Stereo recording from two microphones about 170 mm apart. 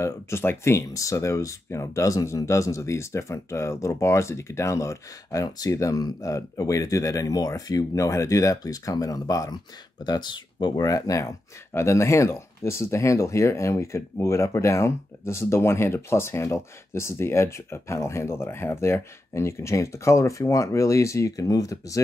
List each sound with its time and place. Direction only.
0.0 s speech: 15° left (ahead or behind)